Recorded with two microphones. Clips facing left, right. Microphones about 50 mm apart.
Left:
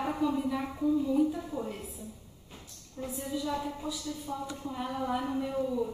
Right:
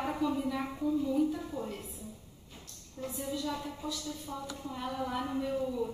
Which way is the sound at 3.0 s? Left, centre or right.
Left.